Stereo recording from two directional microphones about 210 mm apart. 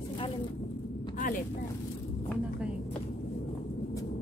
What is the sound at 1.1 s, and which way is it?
Vehicle, 40° left (ahead or behind).